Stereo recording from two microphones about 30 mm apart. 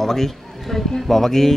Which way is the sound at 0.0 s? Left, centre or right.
Centre.